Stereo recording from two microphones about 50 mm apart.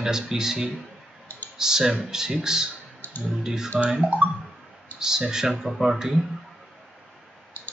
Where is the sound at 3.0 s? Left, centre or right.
Left.